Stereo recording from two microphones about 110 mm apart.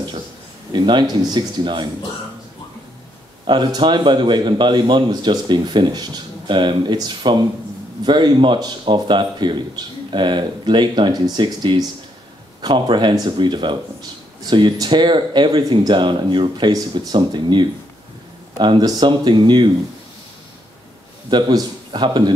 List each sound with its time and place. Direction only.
0.7 s speech: 40° right (ahead or behind)
3.4 s speech: 45° right (ahead or behind)
21.3 s a man's voice: 40° right (ahead or behind)